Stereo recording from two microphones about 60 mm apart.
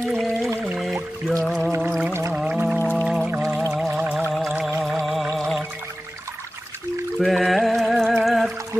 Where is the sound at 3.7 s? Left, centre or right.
Centre.